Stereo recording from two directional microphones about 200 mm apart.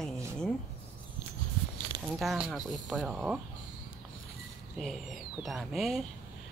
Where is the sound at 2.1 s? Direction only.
Centre (ahead or behind).